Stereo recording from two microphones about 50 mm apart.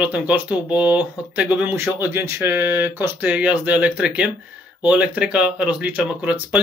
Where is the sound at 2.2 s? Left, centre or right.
Right.